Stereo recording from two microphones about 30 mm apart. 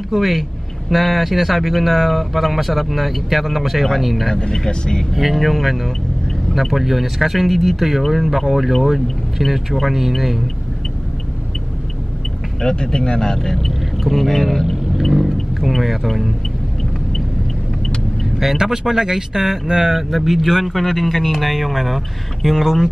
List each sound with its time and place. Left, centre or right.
0.1 s speech: centre
4.4 s speech: left
5.3 s speech: centre
12.6 s speech: left
13.7 s vehicle: centre
14.3 s speech: centre
18.4 s speech: centre